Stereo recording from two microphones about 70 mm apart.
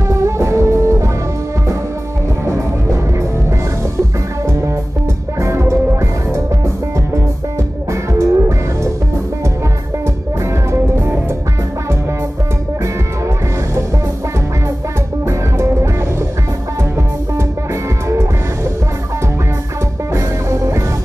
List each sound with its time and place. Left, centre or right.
0.1 s music: right
2.4 s music: right
4.5 s music: right
7.9 s music: right
10.7 s music: right
15.2 s music: right
18.0 s music: right
20.1 s music: right